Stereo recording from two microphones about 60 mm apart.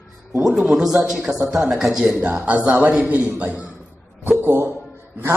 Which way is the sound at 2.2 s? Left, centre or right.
Right.